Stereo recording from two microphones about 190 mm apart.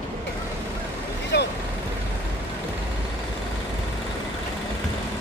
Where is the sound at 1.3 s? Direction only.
60° left (ahead or behind).